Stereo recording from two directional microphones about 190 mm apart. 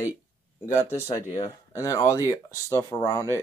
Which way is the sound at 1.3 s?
30° left (ahead or behind).